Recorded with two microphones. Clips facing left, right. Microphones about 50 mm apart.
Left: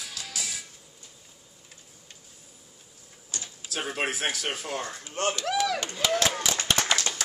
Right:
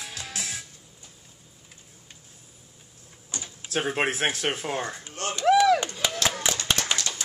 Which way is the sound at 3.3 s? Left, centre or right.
Right.